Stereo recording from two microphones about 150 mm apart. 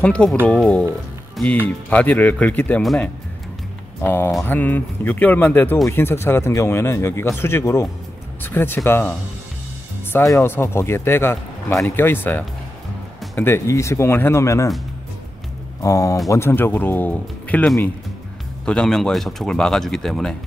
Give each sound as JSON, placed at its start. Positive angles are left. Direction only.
{"t": 0.0, "sound": "speech", "side_deg": 5}
{"t": 1.3, "sound": "music", "side_deg": 5}
{"t": 1.9, "sound": "speech", "side_deg": 10}
{"t": 4.0, "sound": "speech", "side_deg": 15}
{"t": 10.1, "sound": "speech", "side_deg": 15}
{"t": 15.8, "sound": "speech", "side_deg": 20}